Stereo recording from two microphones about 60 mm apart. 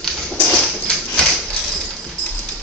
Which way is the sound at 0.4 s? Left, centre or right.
Centre.